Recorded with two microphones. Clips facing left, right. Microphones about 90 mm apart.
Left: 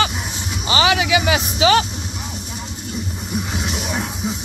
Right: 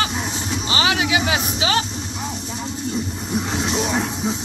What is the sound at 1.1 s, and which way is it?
Speech, 90° left.